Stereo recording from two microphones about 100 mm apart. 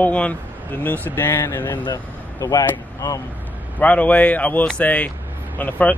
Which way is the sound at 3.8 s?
15° left (ahead or behind).